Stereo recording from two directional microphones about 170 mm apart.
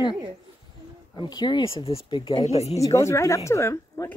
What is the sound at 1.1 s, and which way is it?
Speech, 25° left (ahead or behind).